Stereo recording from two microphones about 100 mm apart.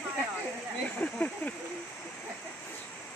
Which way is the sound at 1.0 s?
15° left (ahead or behind).